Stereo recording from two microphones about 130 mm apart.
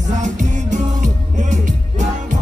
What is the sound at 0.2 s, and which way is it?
Music, 70° right (ahead or behind).